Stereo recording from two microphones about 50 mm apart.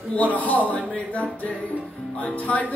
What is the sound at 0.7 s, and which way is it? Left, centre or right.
Music, left.